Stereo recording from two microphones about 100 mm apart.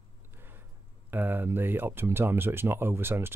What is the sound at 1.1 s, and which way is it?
Speech, 20° right (ahead or behind).